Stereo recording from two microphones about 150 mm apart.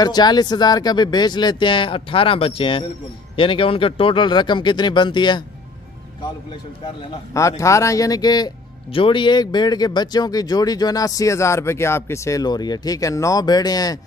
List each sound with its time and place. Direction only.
0.0 s speech: 30° left (ahead or behind)
7.3 s speech: 20° left (ahead or behind)